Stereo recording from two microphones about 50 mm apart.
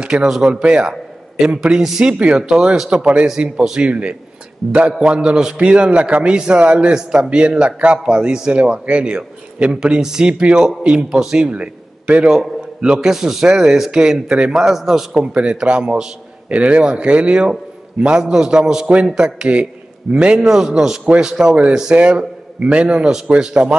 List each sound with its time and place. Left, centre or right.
0.0 s a man's voice: centre
2.1 s a man's voice: right
3.9 s a man's voice: right
4.6 s a man's voice: centre
4.9 s a man's voice: centre
9.8 s a man's voice: centre
12.3 s a man's voice: centre
15.3 s a man's voice: right